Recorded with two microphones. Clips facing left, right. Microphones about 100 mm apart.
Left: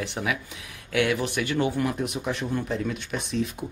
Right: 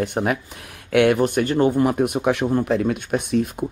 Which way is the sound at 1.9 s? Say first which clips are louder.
Right 9 dB; 55° right (ahead or behind).